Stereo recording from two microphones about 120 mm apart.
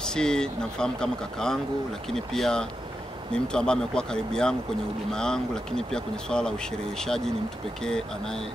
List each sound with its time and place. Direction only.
0.0 s speech: 5° left (ahead or behind)